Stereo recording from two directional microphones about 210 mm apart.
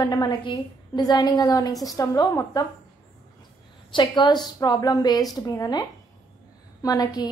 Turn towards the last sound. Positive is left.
turn(degrees=20)  # may be behind; listen again after turning